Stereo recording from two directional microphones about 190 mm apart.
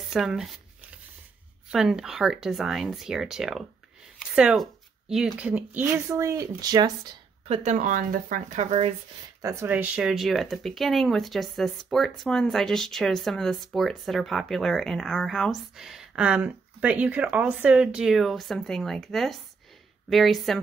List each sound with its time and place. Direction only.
0.1 s speech: centre (ahead or behind)
1.7 s speech: 5° right (ahead or behind); by 7.2 s 20° right (ahead or behind)
7.4 s speech: 35° right (ahead or behind)
9.4 s speech: 15° right (ahead or behind)